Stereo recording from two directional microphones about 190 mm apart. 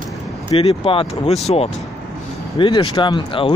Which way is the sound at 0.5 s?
30° left (ahead or behind).